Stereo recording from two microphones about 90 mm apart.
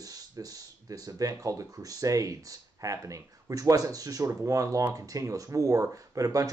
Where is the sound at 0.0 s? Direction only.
45° right (ahead or behind).